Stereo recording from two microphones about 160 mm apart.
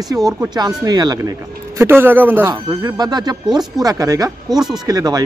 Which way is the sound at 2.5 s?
25° right (ahead or behind).